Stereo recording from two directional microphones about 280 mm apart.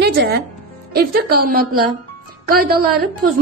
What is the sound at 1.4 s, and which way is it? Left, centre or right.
Speech, right.